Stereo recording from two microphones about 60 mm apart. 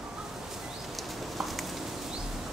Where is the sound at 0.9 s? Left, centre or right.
Centre.